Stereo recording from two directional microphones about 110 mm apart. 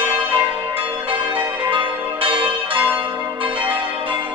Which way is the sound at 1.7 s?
50° right (ahead or behind).